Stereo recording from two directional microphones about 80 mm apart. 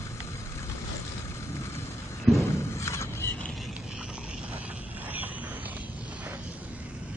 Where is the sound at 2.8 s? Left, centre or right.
Left.